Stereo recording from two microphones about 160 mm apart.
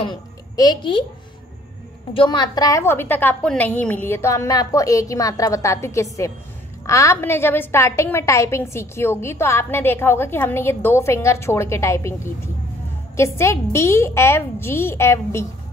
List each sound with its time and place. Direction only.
0.0 s a child's voice: 25° left (ahead or behind)
2.1 s a woman's voice: 30° left (ahead or behind)